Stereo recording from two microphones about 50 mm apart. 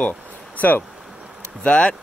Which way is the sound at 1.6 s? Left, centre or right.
Left.